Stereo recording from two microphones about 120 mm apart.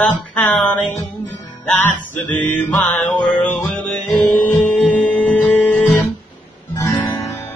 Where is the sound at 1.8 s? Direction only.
15° left (ahead or behind).